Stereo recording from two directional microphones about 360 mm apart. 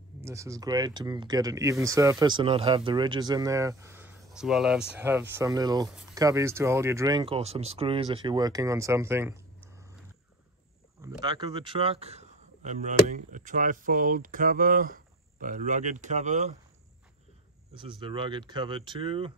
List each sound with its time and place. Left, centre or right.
0.2 s speech: centre
11.0 s speech: centre
17.7 s speech: centre